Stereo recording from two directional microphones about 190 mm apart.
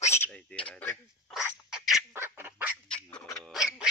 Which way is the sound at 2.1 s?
10° right (ahead or behind).